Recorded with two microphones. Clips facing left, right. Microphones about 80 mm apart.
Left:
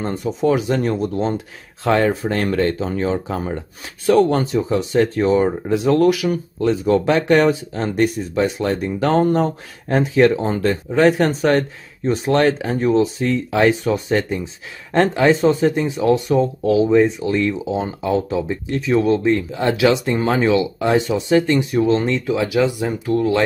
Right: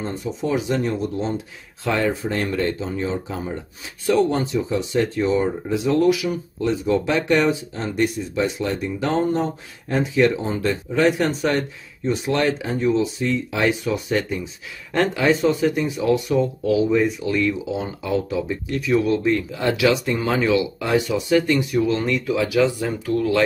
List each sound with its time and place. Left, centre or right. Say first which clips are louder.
0.0 s speech: left 6 dB; left